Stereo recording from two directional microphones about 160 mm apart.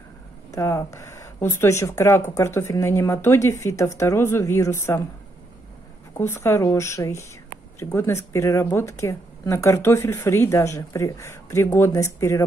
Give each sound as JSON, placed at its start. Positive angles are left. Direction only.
{"t": 0.5, "sound": "speech", "side_deg": 20}
{"t": 6.1, "sound": "speech", "side_deg": 15}